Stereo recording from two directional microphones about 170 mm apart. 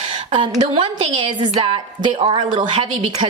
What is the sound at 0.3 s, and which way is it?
A woman's voice, 30° right (ahead or behind).